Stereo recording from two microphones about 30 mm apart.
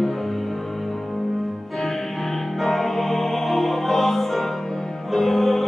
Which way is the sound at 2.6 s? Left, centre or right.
Centre.